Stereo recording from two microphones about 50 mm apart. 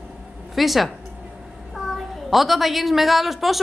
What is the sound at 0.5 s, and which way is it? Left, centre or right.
A child's voice, centre.